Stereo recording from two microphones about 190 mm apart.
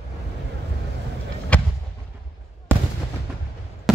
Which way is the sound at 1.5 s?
5° left (ahead or behind).